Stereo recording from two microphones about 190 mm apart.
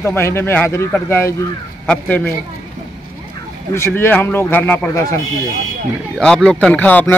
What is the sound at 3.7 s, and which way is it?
Speech, 15° left (ahead or behind).